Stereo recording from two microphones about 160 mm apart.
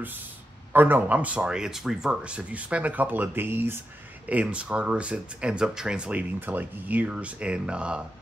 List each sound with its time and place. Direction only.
0.7 s speech: 10° right (ahead or behind)